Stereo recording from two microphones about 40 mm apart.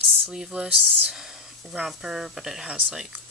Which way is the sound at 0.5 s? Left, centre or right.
Right.